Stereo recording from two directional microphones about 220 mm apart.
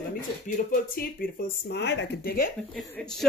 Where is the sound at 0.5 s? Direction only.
40° left (ahead or behind).